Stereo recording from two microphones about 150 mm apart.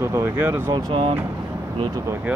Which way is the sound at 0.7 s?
35° right (ahead or behind).